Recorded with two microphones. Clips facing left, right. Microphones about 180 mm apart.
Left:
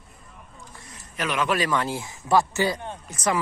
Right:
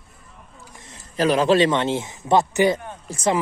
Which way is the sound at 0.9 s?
30° right (ahead or behind).